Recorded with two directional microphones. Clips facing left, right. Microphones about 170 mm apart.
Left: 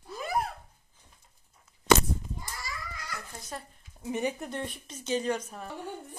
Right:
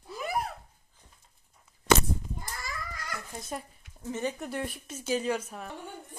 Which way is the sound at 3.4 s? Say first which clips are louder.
Right 6 dB; 20° right (ahead or behind).